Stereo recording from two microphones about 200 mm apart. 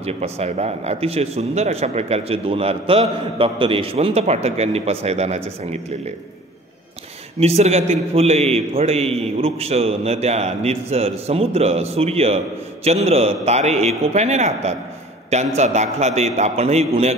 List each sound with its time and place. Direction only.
0.0 s a man's voice: 30° right (ahead or behind)
7.3 s a man's voice: 30° right (ahead or behind)